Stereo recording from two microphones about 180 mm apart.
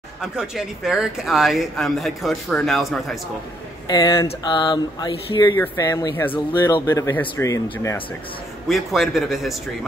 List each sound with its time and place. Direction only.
0.2 s speech: 5° right (ahead or behind)
3.8 s speech: 25° left (ahead or behind)
8.6 s speech: centre (ahead or behind)